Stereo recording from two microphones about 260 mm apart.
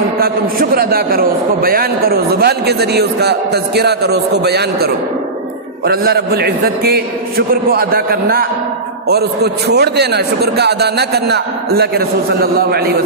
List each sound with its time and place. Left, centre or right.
0.2 s a man's voice: right